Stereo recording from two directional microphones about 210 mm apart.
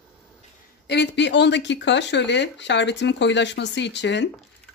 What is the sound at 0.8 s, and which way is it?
Speech, 55° left (ahead or behind).